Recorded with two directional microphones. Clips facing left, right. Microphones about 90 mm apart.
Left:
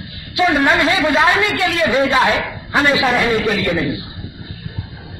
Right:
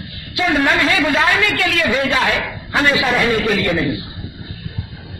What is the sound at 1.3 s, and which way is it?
Speech, 20° left (ahead or behind).